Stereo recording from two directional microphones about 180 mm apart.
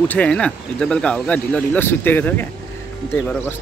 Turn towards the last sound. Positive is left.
turn(degrees=10)  # may be behind; listen again after turning